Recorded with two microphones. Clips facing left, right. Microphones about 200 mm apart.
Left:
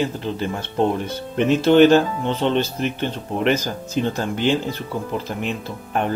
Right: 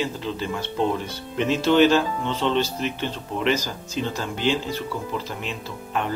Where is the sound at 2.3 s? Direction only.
15° left (ahead or behind).